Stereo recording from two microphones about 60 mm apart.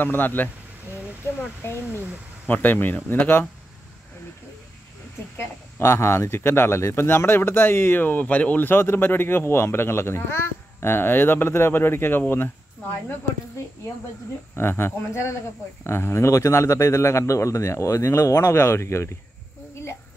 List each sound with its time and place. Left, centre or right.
0.0 s speech: left
1.6 s speech: left
2.4 s speech: left
5.4 s speech: left
14.5 s speech: left
19.7 s a sound: left